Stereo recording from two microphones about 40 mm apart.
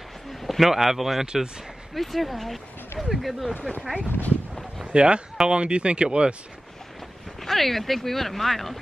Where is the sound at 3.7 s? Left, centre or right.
Left.